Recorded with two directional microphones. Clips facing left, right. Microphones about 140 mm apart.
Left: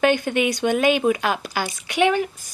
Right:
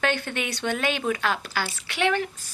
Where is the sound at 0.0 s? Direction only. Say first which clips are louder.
Left 8 dB; 15° left (ahead or behind).